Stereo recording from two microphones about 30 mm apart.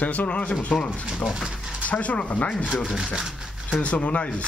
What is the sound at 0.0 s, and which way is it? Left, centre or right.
Speech, left.